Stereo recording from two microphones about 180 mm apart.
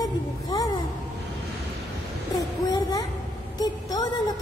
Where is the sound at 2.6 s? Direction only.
20° left (ahead or behind).